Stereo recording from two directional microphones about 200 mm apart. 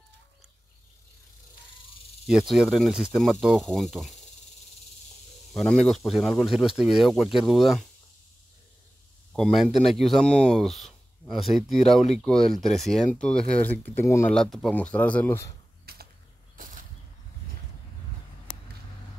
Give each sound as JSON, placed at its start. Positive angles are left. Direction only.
{"t": 2.2, "sound": "speech", "side_deg": 0}
{"t": 5.5, "sound": "speech", "side_deg": 5}
{"t": 9.3, "sound": "speech", "side_deg": 0}
{"t": 15.8, "sound": "a sound", "side_deg": -50}